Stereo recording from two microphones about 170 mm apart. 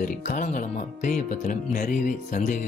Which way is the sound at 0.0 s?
50° left (ahead or behind).